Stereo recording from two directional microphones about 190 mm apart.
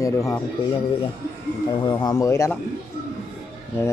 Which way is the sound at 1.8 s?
20° left (ahead or behind).